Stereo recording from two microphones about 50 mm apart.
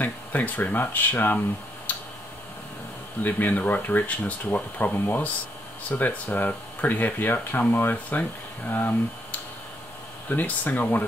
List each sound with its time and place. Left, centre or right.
0.0 s speech: left
3.2 s speech: left
4.9 s speech: left
5.9 s speech: left